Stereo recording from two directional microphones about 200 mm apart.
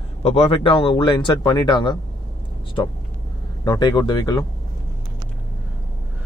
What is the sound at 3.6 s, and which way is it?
Speech, 20° left (ahead or behind).